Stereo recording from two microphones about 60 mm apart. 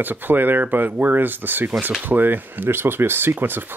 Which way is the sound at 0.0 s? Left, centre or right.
Right.